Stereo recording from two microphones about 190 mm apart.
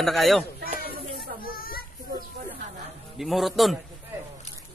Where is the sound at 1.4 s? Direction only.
50° left (ahead or behind).